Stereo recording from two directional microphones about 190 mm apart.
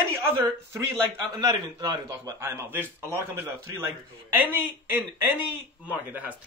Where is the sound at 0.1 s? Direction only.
15° right (ahead or behind).